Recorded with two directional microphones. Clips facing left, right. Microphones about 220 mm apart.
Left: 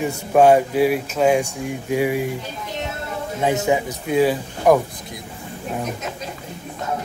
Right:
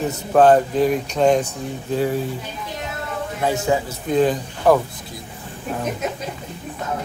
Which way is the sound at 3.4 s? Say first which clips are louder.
Left 1 dB; 20° left (ahead or behind).